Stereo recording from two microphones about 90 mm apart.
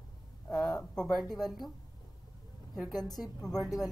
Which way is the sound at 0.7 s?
10° left (ahead or behind).